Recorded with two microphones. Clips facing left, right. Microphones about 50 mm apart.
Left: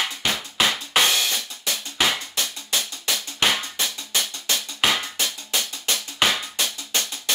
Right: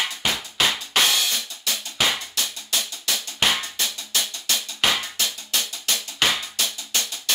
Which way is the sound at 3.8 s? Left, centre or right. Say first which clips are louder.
Left 1 dB; left.